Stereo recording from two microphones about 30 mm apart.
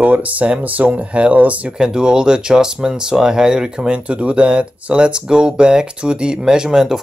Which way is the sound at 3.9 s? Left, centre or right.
Right.